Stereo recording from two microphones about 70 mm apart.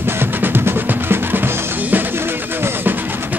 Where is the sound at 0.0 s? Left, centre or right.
Right.